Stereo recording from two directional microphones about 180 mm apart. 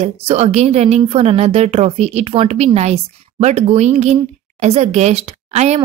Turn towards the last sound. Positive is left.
turn(degrees=-35)  # may be behind; listen again after turning